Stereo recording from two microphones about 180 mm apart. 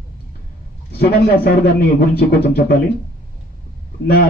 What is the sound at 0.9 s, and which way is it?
A man's voice, 60° left (ahead or behind).